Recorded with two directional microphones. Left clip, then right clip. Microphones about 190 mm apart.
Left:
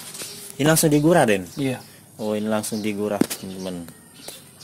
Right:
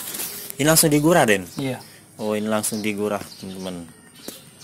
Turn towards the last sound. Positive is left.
turn(degrees=0)  # may be behind; listen again after turning